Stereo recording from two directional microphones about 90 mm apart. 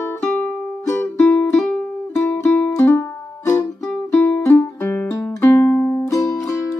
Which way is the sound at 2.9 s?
30° left (ahead or behind).